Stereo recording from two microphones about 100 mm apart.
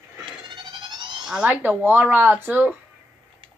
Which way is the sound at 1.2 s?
10° right (ahead or behind).